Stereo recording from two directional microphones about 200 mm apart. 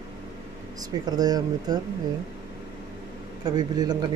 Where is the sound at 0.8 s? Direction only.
20° right (ahead or behind).